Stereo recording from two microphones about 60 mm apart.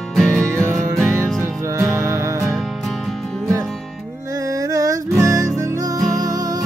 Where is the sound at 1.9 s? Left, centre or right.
Right.